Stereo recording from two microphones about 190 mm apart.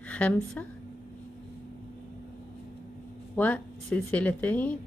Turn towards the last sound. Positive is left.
turn(degrees=10)  # may be behind; listen again after turning